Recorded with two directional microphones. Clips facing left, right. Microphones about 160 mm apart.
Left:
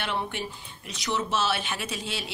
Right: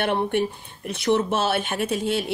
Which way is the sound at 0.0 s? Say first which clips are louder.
Right 9 dB; 55° right (ahead or behind).